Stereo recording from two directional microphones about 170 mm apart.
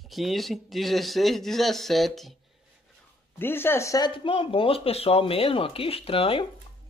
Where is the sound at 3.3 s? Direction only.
15° left (ahead or behind); by 6.5 s 35° left (ahead or behind).